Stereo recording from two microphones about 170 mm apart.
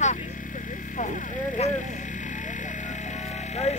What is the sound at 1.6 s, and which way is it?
Vehicle, 40° left (ahead or behind).